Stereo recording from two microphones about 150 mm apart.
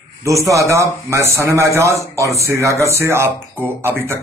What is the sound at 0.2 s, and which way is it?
A man's voice, 20° right (ahead or behind).